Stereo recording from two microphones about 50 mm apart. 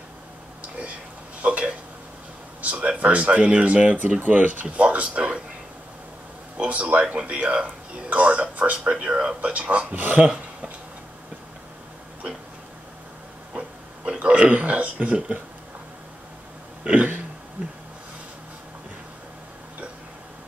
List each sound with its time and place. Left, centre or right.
1.4 s speech: right
3.4 s speech: right
6.6 s speech: right
14.2 s a sound: right
16.9 s speech: right